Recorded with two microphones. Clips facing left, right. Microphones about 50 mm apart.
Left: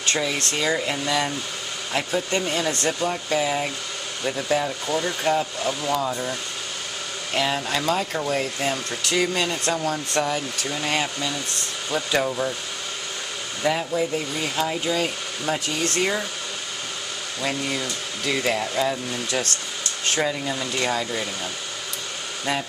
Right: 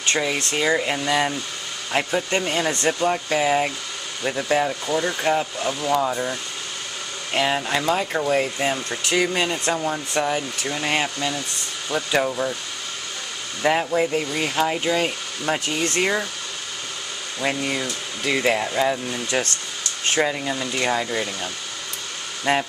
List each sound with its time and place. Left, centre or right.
0.0 s speech: centre
7.3 s speech: centre
11.9 s speech: centre
13.7 s speech: right
17.4 s speech: centre
22.5 s speech: right